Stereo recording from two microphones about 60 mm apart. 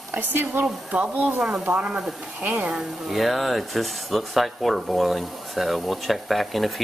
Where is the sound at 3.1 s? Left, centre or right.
Centre.